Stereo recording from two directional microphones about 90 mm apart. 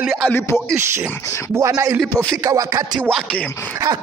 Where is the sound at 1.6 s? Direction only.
35° right (ahead or behind).